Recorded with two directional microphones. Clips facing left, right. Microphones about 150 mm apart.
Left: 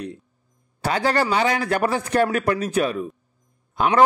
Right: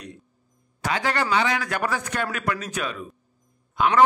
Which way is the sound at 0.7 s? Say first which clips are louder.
Left 4 dB; 35° left (ahead or behind).